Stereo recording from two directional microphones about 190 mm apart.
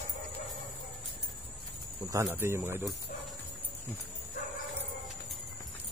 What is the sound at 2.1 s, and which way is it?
Speech, 15° right (ahead or behind).